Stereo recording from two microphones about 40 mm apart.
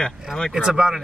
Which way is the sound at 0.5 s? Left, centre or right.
Centre.